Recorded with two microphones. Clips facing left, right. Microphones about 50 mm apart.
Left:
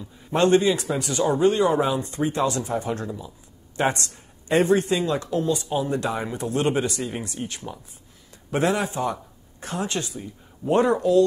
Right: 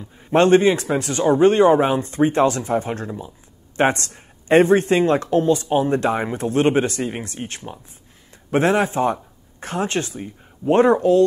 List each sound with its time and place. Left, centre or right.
0.3 s speech: right